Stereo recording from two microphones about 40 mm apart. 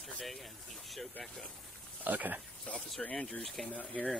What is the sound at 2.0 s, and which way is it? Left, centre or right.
Speech, right.